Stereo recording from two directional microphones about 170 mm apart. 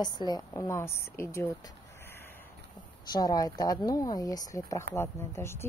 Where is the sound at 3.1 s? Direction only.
25° left (ahead or behind).